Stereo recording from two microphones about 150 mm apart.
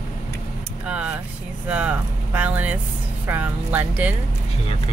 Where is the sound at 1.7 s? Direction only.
10° right (ahead or behind).